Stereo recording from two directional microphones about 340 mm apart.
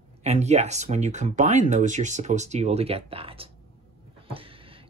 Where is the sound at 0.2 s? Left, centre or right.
Centre.